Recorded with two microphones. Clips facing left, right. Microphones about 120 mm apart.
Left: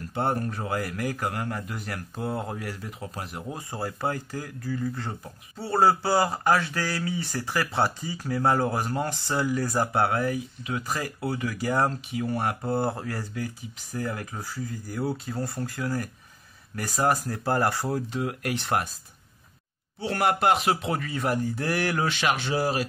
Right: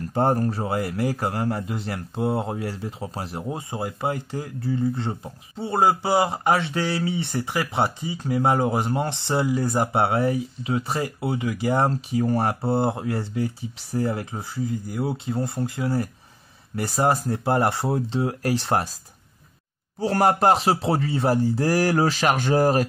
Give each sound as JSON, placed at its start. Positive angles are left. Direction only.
{"t": 0.1, "sound": "speech", "side_deg": -40}
{"t": 11.9, "sound": "speech", "side_deg": -35}
{"t": 20.0, "sound": "speech", "side_deg": -35}